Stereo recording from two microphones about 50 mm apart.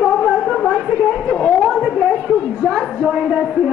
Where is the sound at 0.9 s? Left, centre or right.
Centre.